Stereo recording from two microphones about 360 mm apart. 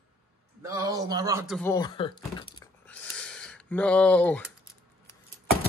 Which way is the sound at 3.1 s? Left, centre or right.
Centre.